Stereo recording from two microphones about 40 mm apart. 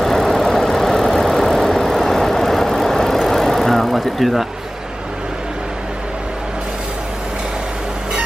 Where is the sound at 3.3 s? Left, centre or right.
Centre.